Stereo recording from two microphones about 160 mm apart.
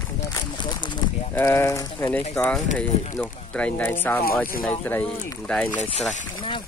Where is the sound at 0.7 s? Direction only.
30° left (ahead or behind).